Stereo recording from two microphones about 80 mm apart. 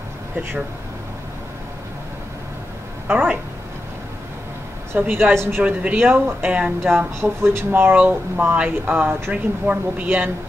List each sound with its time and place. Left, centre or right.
3.1 s speech: right
4.9 s speech: right
5.6 s speech: centre
6.9 s speech: right